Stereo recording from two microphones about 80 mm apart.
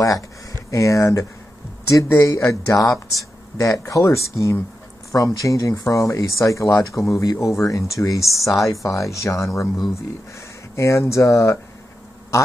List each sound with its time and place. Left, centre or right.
0.7 s speech: left
10.8 s speech: left